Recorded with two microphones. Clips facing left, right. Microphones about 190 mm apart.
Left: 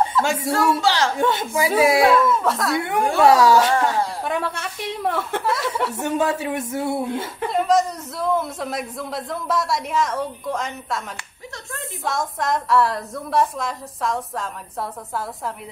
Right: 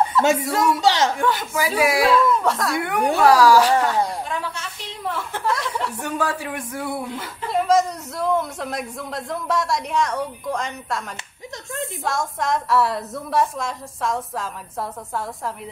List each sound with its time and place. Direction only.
0.2 s speech: 20° right (ahead or behind)
1.1 s speech: 25° left (ahead or behind)
2.2 s speech: centre (ahead or behind)
2.8 s speech: 25° left (ahead or behind)
4.3 s a woman's voice: 60° left (ahead or behind)
5.4 s a woman's voice: centre (ahead or behind)
5.9 s speech: 20° left (ahead or behind)
7.5 s a woman's voice: centre (ahead or behind)